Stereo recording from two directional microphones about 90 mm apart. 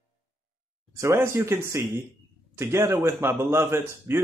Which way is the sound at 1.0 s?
30° right (ahead or behind).